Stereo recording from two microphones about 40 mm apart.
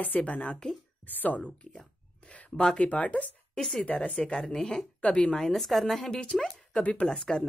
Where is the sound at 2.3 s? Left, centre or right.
Left.